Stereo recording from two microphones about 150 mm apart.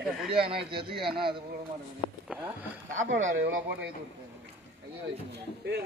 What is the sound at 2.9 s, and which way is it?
Speech, 60° right (ahead or behind).